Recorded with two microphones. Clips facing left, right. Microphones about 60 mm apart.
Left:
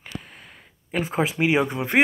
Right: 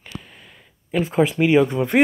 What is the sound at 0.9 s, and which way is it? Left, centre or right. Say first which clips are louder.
Speech: right 5 dB; left.